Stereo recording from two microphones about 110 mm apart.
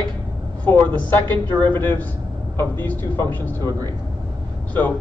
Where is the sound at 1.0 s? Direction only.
15° left (ahead or behind).